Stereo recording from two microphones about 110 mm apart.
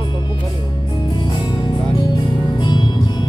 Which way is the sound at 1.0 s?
45° left (ahead or behind).